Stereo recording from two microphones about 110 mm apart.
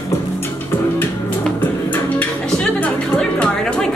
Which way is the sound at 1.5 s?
15° left (ahead or behind).